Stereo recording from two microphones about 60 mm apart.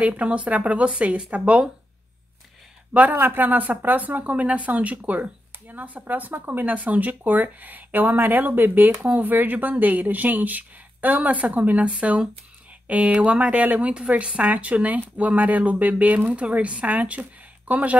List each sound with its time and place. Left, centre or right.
0.0 s speech: right
2.9 s speech: right